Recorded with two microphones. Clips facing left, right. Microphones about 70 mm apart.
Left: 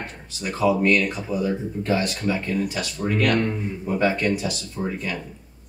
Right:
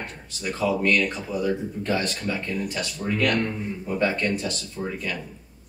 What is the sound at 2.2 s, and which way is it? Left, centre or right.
Speech, left.